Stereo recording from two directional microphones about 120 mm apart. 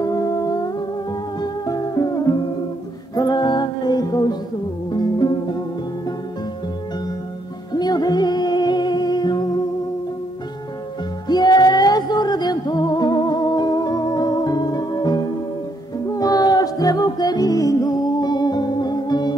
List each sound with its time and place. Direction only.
0.0 s music: 30° left (ahead or behind)
7.7 s music: 35° left (ahead or behind)
11.2 s music: 35° left (ahead or behind)